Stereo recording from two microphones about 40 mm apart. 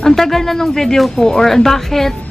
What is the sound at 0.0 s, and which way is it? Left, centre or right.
A woman's voice, centre.